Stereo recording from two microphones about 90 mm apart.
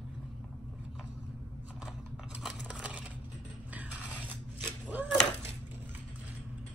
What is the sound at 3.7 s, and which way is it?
Mechanisms, 20° right (ahead or behind).